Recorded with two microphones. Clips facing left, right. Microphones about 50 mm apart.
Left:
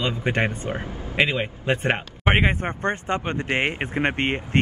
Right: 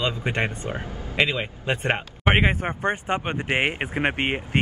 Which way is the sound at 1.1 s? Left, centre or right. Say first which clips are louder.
Left 1 dB; centre.